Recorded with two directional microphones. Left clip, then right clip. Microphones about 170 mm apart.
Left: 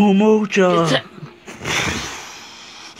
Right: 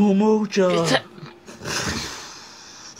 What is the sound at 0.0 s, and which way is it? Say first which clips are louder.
Speech: left 4 dB; 40° left (ahead or behind).